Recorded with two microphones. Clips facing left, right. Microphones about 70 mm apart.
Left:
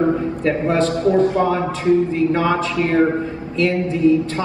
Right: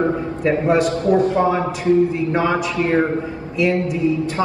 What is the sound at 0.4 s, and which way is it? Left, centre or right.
Speech, centre.